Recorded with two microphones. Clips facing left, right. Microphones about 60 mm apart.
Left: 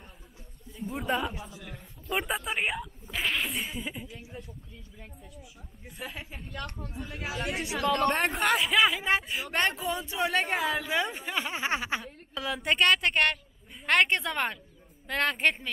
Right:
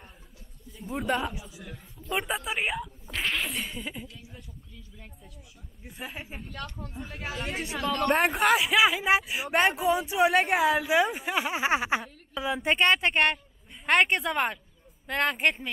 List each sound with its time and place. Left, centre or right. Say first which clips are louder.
0.7 s a woman's voice: right 1 dB; centre
5.2 s a woman's voice: left 3 dB; centre
7.0 s a woman's voice: left 1 dB; centre